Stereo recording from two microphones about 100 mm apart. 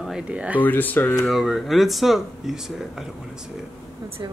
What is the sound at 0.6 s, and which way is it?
Speech, 20° left (ahead or behind).